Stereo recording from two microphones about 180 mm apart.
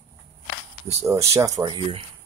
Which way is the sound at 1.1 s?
15° right (ahead or behind).